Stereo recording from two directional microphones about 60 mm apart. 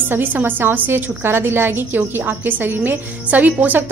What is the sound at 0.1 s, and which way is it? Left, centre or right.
A woman's voice, right.